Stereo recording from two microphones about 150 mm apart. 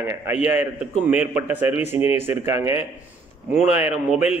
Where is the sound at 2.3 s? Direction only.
20° right (ahead or behind).